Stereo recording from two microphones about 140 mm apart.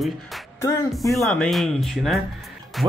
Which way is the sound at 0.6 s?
20° left (ahead or behind).